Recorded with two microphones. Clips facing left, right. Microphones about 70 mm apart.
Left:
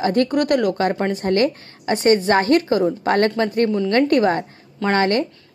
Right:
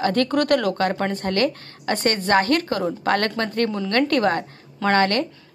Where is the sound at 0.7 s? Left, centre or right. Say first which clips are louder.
Left 2 dB; left.